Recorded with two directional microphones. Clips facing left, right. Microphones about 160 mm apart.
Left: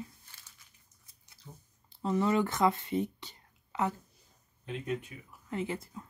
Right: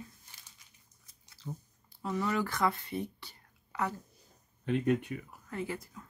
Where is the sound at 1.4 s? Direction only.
90° right.